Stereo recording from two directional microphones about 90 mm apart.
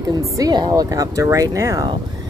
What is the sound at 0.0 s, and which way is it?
Speech, 45° right (ahead or behind).